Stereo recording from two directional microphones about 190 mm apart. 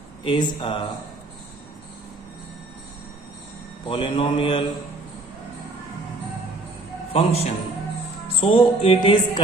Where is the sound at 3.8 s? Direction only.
25° left (ahead or behind).